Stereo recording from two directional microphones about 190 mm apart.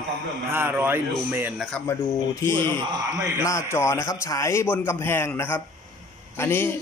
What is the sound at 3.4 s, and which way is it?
A man's voice, 15° left (ahead or behind).